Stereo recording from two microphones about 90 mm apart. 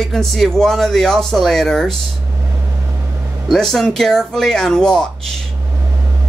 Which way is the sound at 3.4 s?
Centre (ahead or behind).